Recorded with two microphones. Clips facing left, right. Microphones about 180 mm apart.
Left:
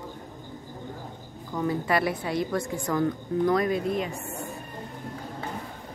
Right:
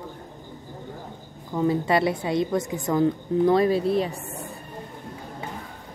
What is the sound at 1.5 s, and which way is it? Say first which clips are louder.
A woman's voice: right 4 dB; 25° right (ahead or behind).